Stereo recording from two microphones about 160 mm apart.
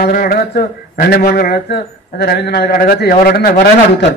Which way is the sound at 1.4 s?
85° left.